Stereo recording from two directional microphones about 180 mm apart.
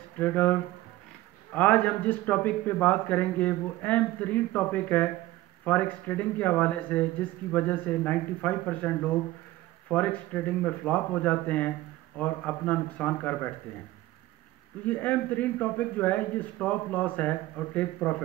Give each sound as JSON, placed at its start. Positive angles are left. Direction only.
{"t": 0.2, "sound": "a man's voice", "side_deg": 10}
{"t": 14.9, "sound": "a man's voice", "side_deg": 10}